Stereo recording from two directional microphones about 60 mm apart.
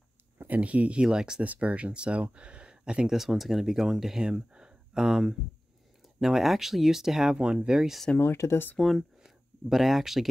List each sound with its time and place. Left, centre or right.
0.4 s speech: right
1.0 s speech: centre
1.4 s speech: right; by 8.0 s centre
8.2 s speech: left
8.7 s speech: centre
9.2 s speech: centre